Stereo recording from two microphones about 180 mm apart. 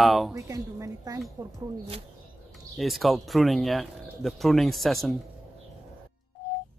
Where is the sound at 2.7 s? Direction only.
Centre (ahead or behind).